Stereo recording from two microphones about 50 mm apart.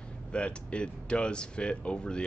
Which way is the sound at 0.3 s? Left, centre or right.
Left.